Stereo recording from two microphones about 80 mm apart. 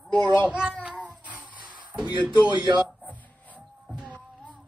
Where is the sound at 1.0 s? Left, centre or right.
Centre.